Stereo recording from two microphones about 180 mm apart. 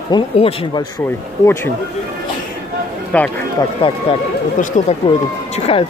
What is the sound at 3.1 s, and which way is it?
Speech, 5° left (ahead or behind).